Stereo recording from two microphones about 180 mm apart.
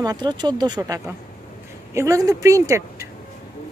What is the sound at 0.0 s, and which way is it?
Speech, 20° right (ahead or behind).